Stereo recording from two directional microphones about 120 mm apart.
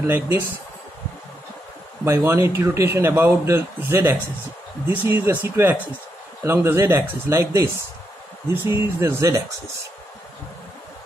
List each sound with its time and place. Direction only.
0.0 s speech: 20° right (ahead or behind)
2.0 s speech: 25° right (ahead or behind)